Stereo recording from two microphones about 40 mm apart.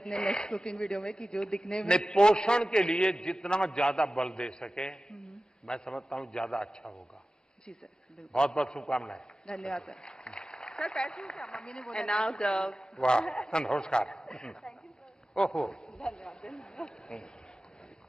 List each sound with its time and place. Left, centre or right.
0.0 s speech: centre
4.1 s speech: centre
5.9 s a man's voice: centre
8.3 s speech: left
8.5 s speech: centre
9.5 s speech: centre
14.1 s speech: centre
15.5 s speech: centre